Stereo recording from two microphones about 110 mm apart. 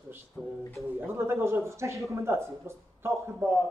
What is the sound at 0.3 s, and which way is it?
Speech, 20° left (ahead or behind).